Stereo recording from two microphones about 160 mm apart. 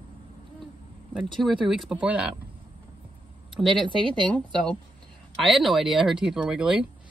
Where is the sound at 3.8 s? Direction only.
30° right (ahead or behind).